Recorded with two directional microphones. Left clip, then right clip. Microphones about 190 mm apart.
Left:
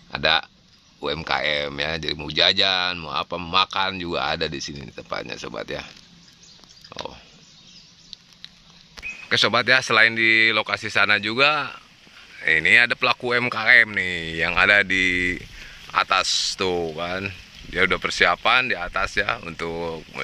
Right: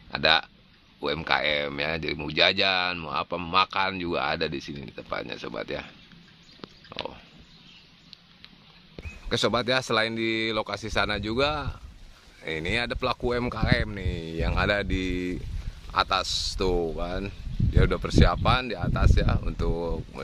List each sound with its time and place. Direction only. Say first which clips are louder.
0.1 s speech: left 2 dB; 5° left (ahead or behind)
9.3 s speech: left 7 dB; 10° right (ahead or behind)
19.7 s speech: left 1 dB; 20° left (ahead or behind)